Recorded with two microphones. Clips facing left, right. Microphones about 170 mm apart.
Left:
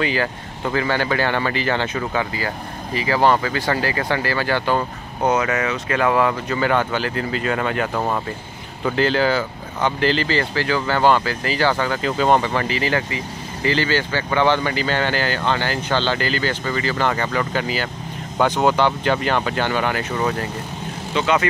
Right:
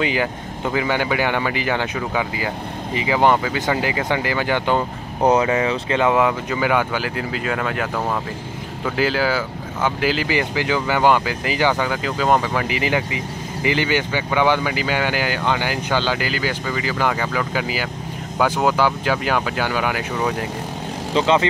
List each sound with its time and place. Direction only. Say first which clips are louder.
0.0 s speech: right 1 dB; 15° right (ahead or behind)
5.2 s speech: right 3 dB; 30° right (ahead or behind); by 12.6 s 5° right (ahead or behind)
12.6 s speech: even; 15° right (ahead or behind)
21.1 s speech: right 2 dB; 30° right (ahead or behind)